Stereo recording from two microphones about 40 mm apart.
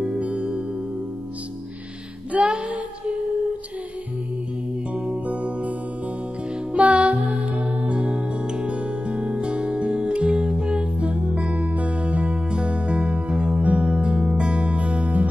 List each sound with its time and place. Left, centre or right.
0.0 s music: right
2.3 s child singing: right
5.1 s music: right
6.7 s music: right
7.9 s music: right